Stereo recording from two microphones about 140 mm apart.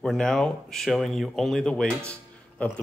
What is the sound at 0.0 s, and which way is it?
Speech, 5° left (ahead or behind).